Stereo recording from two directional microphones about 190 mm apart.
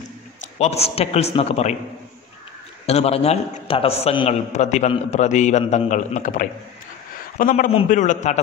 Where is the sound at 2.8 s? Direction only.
35° left (ahead or behind).